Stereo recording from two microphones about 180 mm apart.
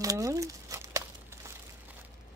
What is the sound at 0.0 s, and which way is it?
Crumpling, 20° right (ahead or behind).